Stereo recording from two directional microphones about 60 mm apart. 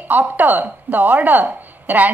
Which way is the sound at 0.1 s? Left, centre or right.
Right.